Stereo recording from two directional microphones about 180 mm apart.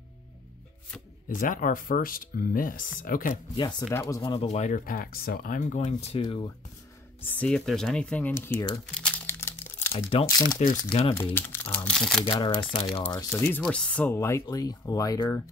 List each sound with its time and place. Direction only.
1.3 s speech: 50° left (ahead or behind)
3.5 s speech: 20° left (ahead or behind)
4.2 s speech: 25° left (ahead or behind)
4.5 s speech: 40° left (ahead or behind)
7.2 s speech: 10° left (ahead or behind)
9.9 s speech: 30° left (ahead or behind)
11.3 s speech: 10° left (ahead or behind)
12.3 s speech: 25° left (ahead or behind)
13.4 s speech: 10° left (ahead or behind)